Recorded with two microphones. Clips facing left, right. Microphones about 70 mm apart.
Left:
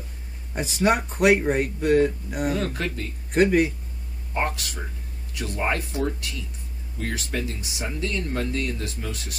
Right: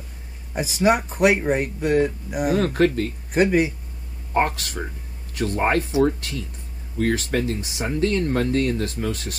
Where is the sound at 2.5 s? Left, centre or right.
Right.